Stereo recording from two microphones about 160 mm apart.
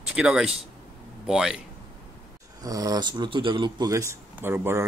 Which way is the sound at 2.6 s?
25° right (ahead or behind).